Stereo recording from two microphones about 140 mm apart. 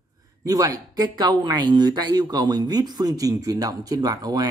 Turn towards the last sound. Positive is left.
turn(degrees=-30)  # may be behind; listen again after turning